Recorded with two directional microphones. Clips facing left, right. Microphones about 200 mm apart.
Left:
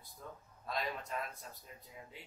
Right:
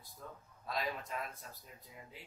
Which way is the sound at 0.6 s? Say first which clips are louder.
Even; centre (ahead or behind).